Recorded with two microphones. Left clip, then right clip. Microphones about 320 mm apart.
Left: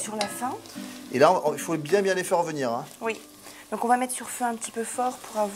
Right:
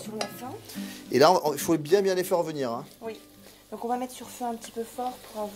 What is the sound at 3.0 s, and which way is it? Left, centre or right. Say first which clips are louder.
Speech: left 8 dB; left.